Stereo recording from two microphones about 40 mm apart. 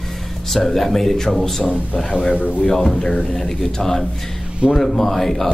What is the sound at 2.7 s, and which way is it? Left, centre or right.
Speech, centre.